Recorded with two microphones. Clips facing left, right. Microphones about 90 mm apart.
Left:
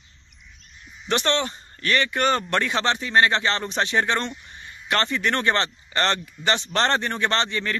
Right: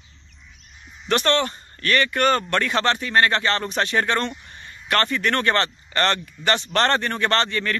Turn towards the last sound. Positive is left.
turn(degrees=20)  # may be behind; listen again after turning